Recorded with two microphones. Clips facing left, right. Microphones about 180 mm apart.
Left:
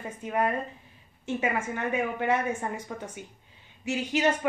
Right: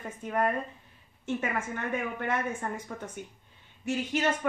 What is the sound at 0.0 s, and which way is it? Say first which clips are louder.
Speech: left 1 dB; 10° left (ahead or behind).